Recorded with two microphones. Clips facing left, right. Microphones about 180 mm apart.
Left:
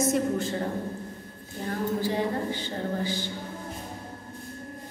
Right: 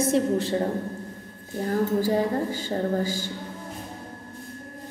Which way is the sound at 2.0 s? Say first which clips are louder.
Right 4 dB; 45° right (ahead or behind).